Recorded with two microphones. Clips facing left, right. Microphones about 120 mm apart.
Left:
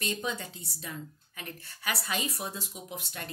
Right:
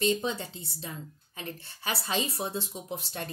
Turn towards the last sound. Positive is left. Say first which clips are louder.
# right 4 dB
turn(degrees=-30)  # may be behind; listen again after turning